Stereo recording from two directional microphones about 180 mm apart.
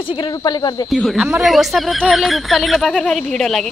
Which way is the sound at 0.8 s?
Centre (ahead or behind).